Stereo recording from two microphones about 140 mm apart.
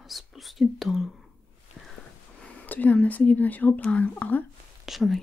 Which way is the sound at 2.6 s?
10° left (ahead or behind).